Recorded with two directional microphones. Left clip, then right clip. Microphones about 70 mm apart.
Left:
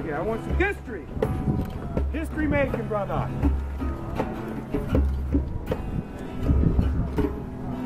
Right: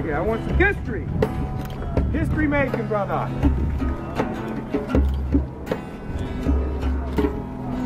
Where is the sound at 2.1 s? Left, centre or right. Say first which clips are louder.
Right 3 dB; centre.